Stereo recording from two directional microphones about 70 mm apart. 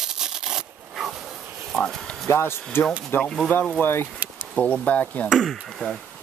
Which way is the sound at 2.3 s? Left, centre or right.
Left.